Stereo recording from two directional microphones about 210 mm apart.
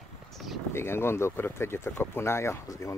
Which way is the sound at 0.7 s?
10° left (ahead or behind).